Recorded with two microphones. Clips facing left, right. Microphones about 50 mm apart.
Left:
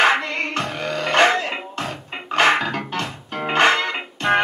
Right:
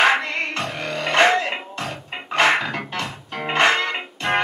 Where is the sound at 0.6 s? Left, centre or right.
Left.